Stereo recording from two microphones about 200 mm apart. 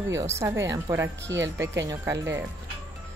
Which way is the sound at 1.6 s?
15° right (ahead or behind).